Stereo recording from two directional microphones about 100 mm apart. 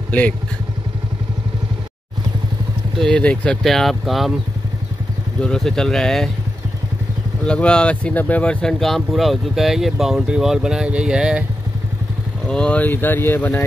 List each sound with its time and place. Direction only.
3.0 s speech: 10° left (ahead or behind)
5.4 s speech: 5° left (ahead or behind)
7.4 s speech: 10° left (ahead or behind); by 11.4 s 5° right (ahead or behind)
12.4 s speech: 10° left (ahead or behind)